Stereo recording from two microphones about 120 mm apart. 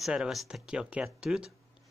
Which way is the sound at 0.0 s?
5° right (ahead or behind).